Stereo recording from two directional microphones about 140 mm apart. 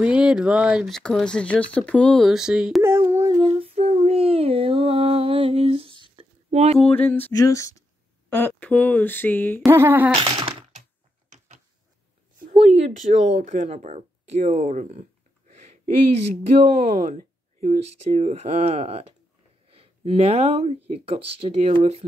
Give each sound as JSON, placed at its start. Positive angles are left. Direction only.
{"t": 0.0, "sound": "speech", "side_deg": -10}
{"t": 2.8, "sound": "a sound", "side_deg": -20}
{"t": 3.3, "sound": "child singing", "side_deg": -45}
{"t": 6.9, "sound": "speech", "side_deg": 15}
{"t": 9.7, "sound": "speech", "side_deg": -15}
{"t": 11.2, "sound": "a sound", "side_deg": -60}
{"t": 12.5, "sound": "speech", "side_deg": -50}
{"t": 16.8, "sound": "speech", "side_deg": -65}
{"t": 17.7, "sound": "speech", "side_deg": -50}